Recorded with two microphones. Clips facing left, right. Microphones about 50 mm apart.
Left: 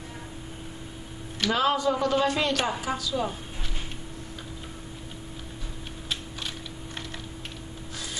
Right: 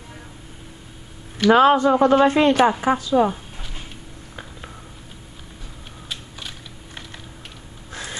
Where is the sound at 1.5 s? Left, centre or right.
Right.